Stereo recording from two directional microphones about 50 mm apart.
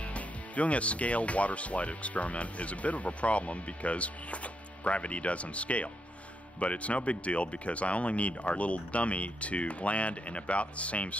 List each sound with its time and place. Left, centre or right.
0.0 s speech: left